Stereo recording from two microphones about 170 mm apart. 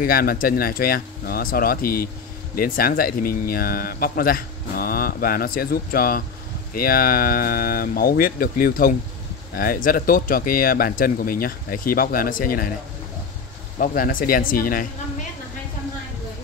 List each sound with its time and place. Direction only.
0.0 s speech: 60° left (ahead or behind)
13.7 s speech: 55° left (ahead or behind)